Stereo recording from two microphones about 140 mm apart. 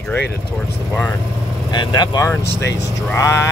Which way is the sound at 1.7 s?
30° left (ahead or behind).